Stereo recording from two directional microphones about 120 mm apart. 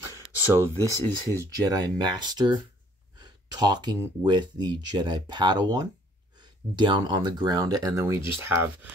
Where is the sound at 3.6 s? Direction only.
35° right (ahead or behind); by 8.9 s 20° right (ahead or behind).